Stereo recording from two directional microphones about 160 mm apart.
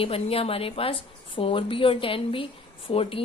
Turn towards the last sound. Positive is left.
turn(degrees=35)  # may be behind; listen again after turning